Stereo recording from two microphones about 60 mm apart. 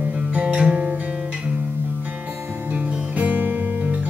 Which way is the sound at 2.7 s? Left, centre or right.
Right.